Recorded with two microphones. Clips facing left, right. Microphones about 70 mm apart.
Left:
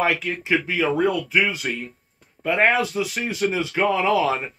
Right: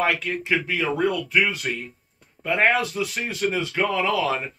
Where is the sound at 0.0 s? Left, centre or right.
Centre.